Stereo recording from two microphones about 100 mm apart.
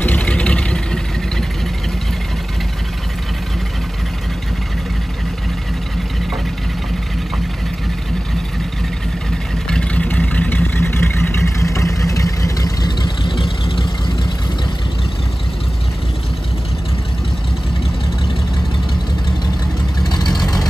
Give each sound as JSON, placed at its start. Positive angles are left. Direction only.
{"t": 0.0, "sound": "vehicle", "side_deg": 15}
{"t": 9.7, "sound": "vehicle", "side_deg": 10}
{"t": 20.1, "sound": "vehicle", "side_deg": 45}